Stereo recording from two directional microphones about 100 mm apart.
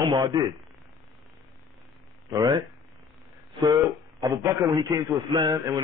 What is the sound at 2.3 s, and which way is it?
Speech, 45° right (ahead or behind).